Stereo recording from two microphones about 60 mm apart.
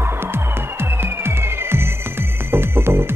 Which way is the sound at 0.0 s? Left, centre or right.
Right.